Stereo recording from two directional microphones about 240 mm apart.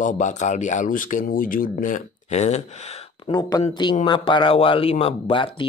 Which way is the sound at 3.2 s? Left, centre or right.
Centre.